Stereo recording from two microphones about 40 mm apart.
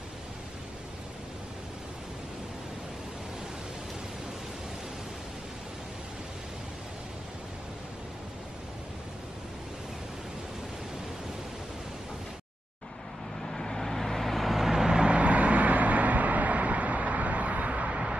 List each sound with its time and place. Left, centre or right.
13.5 s vehicle: centre
15.0 s vehicle: right